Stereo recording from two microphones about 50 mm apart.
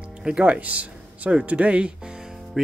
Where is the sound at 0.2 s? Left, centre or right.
Right.